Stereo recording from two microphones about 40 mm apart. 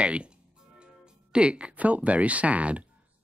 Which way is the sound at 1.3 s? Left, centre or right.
Right.